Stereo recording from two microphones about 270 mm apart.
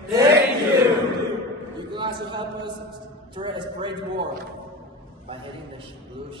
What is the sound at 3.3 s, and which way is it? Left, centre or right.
Speech, centre.